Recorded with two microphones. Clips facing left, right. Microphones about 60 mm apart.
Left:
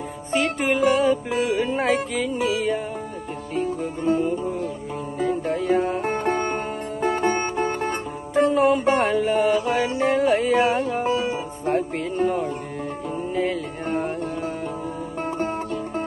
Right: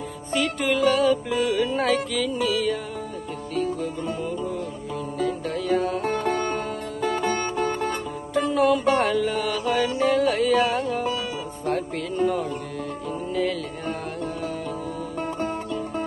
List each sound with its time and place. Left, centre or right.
0.3 s music: left